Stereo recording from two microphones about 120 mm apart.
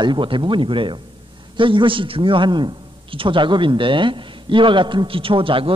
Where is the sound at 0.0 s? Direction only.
40° right (ahead or behind).